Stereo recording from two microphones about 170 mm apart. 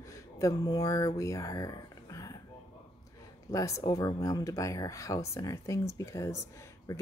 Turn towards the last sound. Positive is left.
turn(degrees=15)  # may be behind; listen again after turning